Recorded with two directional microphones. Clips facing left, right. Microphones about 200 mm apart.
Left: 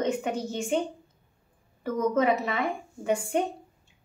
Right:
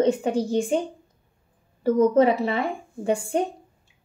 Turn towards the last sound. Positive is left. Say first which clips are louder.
# right 3 dB
turn(degrees=-30)  # may be behind; listen again after turning